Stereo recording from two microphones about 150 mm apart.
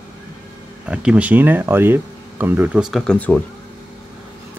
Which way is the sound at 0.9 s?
10° right (ahead or behind).